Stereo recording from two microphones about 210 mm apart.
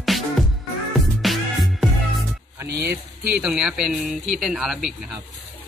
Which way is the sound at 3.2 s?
5° right (ahead or behind).